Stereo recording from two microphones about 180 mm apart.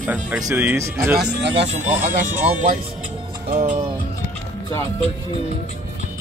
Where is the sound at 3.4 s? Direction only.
45° right (ahead or behind).